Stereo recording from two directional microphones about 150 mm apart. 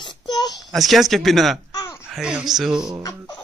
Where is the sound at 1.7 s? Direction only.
25° left (ahead or behind).